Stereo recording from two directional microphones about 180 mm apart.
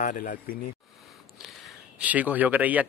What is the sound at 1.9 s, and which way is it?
Speech, 10° right (ahead or behind).